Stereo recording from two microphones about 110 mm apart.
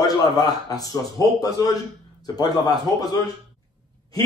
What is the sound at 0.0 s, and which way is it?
A man's voice, 35° left (ahead or behind).